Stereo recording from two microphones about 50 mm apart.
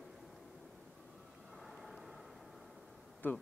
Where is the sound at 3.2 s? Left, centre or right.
Left.